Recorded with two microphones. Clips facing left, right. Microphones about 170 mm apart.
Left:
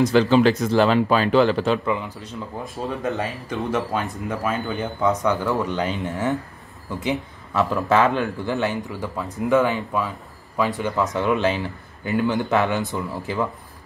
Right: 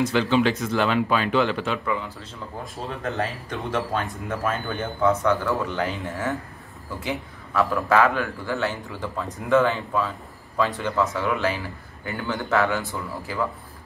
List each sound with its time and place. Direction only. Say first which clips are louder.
0.0 s speech: left 5 dB; 35° left (ahead or behind)
1.9 s speech: left 3 dB; 15° left (ahead or behind)